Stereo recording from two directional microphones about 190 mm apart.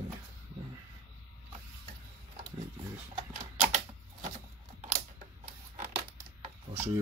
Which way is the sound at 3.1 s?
40° right (ahead or behind).